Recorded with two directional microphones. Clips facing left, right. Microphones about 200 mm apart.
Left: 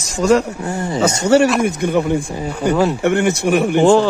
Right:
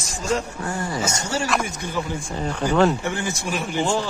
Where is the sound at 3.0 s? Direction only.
65° left (ahead or behind).